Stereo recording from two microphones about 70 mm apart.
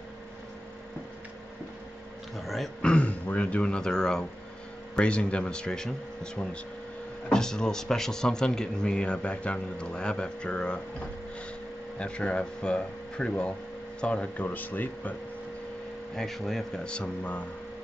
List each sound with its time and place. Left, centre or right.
2.4 s speech: centre
2.8 s a man's voice: centre
12.0 s a man's voice: centre
16.2 s a man's voice: centre